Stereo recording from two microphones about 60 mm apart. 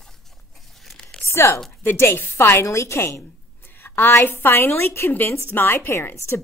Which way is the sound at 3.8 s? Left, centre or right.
Left.